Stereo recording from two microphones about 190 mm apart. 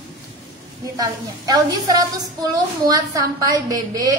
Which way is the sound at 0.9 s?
20° right (ahead or behind).